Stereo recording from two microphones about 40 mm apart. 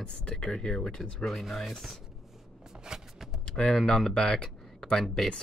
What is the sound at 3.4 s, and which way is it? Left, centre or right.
Typing, left.